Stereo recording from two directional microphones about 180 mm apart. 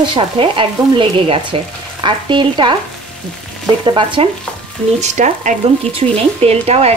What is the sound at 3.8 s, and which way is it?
Sizzle, 30° right (ahead or behind).